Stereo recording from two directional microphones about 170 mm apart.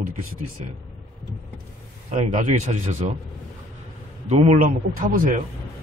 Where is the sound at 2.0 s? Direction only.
50° right (ahead or behind).